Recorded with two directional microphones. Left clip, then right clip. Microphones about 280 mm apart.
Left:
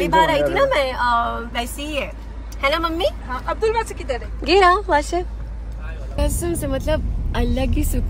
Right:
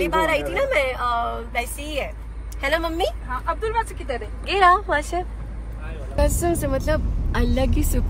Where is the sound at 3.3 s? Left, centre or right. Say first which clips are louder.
Left 4 dB; centre.